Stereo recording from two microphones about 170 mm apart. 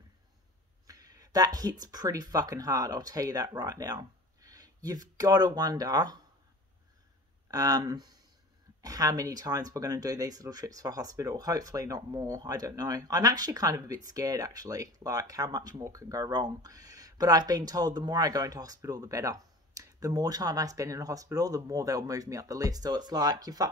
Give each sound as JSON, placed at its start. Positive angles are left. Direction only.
{"t": 0.8, "sound": "speech", "side_deg": -20}
{"t": 7.5, "sound": "speech", "side_deg": -20}